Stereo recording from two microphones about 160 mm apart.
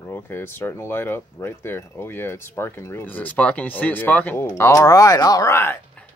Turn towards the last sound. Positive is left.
turn(degrees=10)  # may be behind; listen again after turning